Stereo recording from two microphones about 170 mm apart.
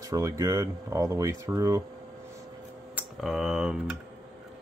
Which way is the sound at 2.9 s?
5° right (ahead or behind).